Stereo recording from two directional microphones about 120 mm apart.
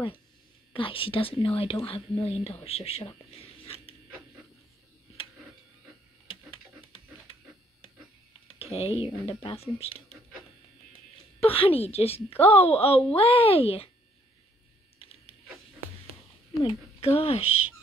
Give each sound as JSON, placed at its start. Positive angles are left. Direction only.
{"t": 0.7, "sound": "a woman's voice", "side_deg": 45}
{"t": 3.3, "sound": "a sound", "side_deg": 55}
{"t": 8.5, "sound": "speech", "side_deg": 55}
{"t": 11.3, "sound": "a woman's voice", "side_deg": 55}
{"t": 15.0, "sound": "printer", "side_deg": 50}
{"t": 16.6, "sound": "speech", "side_deg": 55}